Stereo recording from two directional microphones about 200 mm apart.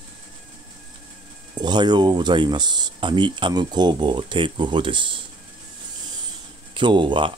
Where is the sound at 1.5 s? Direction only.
20° right (ahead or behind).